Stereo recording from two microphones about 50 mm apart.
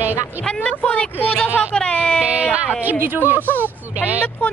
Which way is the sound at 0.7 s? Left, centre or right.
Left.